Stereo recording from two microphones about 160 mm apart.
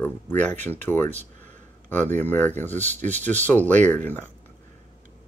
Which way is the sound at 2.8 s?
45° right (ahead or behind).